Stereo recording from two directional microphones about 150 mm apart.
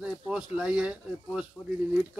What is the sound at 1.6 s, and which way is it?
Speech, 15° left (ahead or behind).